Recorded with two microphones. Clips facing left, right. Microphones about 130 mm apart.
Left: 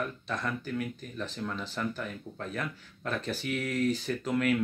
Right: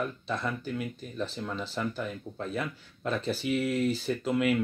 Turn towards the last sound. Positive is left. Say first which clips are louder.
# right 2 dB
turn(degrees=-10)  # may be behind; listen again after turning